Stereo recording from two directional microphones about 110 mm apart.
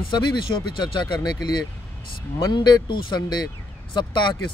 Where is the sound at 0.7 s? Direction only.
40° left (ahead or behind).